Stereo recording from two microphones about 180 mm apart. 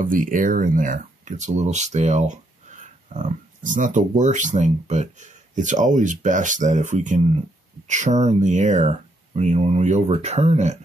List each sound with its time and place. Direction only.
0.0 s speech: 50° right (ahead or behind)